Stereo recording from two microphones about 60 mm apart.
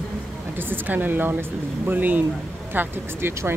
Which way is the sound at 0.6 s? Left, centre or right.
Right.